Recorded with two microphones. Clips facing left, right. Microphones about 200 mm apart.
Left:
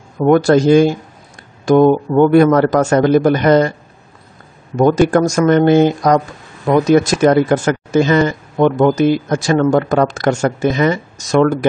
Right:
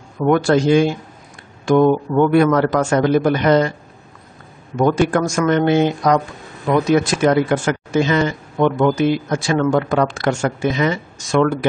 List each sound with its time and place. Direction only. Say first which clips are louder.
0.2 s speech: left 4 dB; 40° left (ahead or behind)
4.7 s speech: left 4 dB; 40° left (ahead or behind)